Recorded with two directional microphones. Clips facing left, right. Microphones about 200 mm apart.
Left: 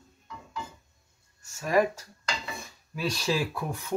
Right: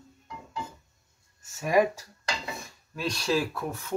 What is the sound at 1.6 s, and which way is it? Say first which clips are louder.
Speech: right 1 dB; 15° right (ahead or behind).